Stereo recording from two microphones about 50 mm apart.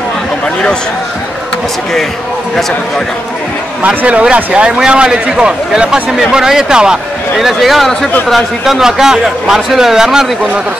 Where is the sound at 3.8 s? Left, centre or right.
Right.